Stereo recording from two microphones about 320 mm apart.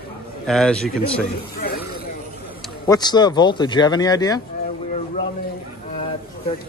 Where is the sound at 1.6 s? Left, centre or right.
Left.